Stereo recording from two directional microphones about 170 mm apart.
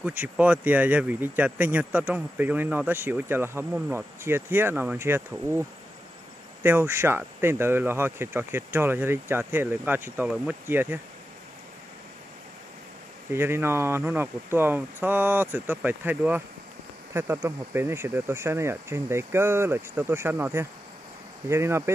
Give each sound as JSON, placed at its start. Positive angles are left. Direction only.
{"t": 0.0, "sound": "speech", "side_deg": -10}
{"t": 13.3, "sound": "speech", "side_deg": -15}